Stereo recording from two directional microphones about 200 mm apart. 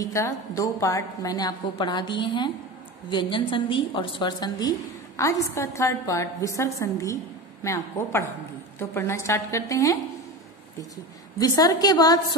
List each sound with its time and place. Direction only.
0.0 s a woman's voice: 15° left (ahead or behind)
11.3 s a woman's voice: 20° left (ahead or behind)